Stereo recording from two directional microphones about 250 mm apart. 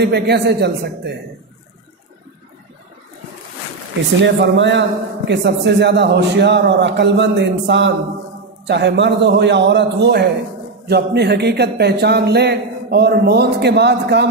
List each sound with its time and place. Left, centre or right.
0.0 s speech: right
4.2 s a man's voice: right